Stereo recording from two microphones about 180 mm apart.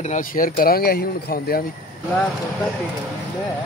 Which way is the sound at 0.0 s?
45° left (ahead or behind).